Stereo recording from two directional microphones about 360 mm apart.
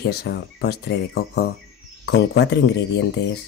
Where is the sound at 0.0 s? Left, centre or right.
Left.